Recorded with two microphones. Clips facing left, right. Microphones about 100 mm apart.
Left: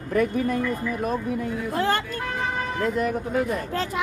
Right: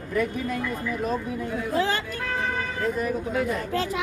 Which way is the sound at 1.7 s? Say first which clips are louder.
Left 1 dB; 50° left (ahead or behind).